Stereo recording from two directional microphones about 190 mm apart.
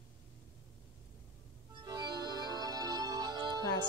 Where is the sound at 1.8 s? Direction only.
20° right (ahead or behind).